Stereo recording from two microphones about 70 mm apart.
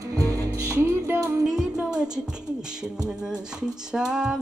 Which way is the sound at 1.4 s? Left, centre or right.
Centre.